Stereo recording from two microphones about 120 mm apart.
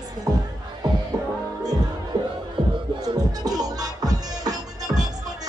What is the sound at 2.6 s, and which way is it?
Music, 40° right (ahead or behind).